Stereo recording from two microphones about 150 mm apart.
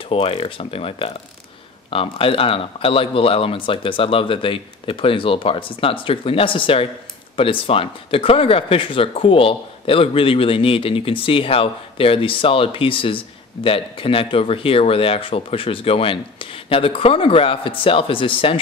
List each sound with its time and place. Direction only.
0.1 s speech: 40° left (ahead or behind)